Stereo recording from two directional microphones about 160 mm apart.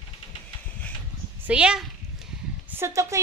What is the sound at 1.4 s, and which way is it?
Speech, 5° right (ahead or behind).